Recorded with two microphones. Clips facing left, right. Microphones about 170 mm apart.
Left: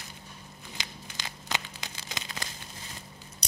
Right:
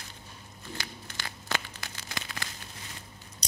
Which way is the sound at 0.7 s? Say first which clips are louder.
Right 1 dB; 20° left (ahead or behind).